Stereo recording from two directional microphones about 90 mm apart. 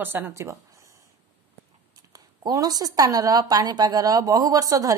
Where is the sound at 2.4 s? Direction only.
45° right (ahead or behind).